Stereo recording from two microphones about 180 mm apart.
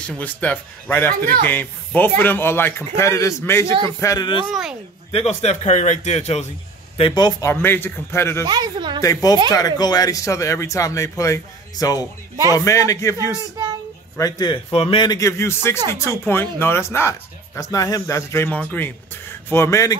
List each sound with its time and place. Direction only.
0.0 s speech: 5° left (ahead or behind); by 4.5 s 25° left (ahead or behind)
4.5 s speech: 5° right (ahead or behind)
5.1 s speech: 35° left (ahead or behind)
7.0 s speech: 25° left (ahead or behind)
8.5 s speech: 25° right (ahead or behind)
9.0 s speech: 20° left (ahead or behind)